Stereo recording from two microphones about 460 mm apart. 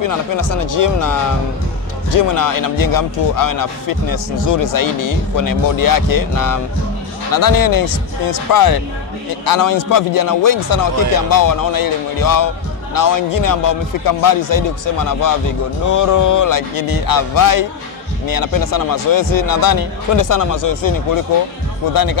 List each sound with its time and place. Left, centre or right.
0.0 s speech: left
15.9 s speech: left